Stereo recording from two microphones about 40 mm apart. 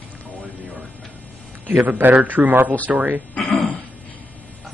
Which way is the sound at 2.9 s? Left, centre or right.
Right.